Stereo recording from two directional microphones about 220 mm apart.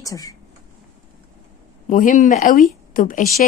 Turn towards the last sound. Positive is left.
turn(degrees=35)  # may be behind; listen again after turning